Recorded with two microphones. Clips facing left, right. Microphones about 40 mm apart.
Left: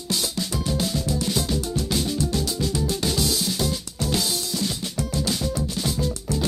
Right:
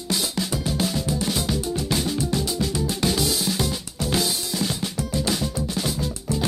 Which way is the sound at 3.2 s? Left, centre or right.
Centre.